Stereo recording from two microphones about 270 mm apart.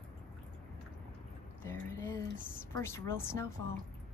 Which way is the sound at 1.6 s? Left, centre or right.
Centre.